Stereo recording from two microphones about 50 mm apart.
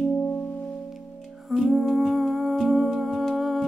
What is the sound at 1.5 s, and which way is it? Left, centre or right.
Humming, centre.